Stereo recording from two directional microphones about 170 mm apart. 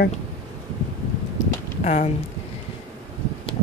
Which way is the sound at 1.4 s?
45° left (ahead or behind).